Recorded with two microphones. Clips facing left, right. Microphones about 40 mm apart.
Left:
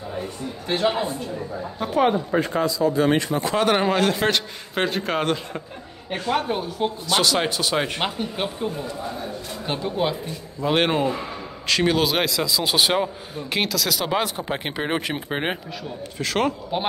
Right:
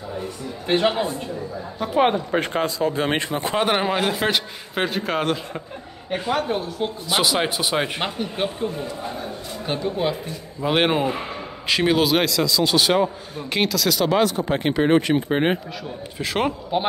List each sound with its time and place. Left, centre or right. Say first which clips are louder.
0.7 s a man's voice: right 2 dB; right
2.0 s speech: even; right
3.7 s a man's voice: left 1 dB; centre
7.1 s speech: right 1 dB; centre
8.0 s a man's voice: right 1 dB; centre
10.6 s a man's voice: right 1 dB; centre
13.0 s a man's voice: right 4 dB; centre
14.0 s a man's voice: right 4 dB; centre
16.2 s speech: even; centre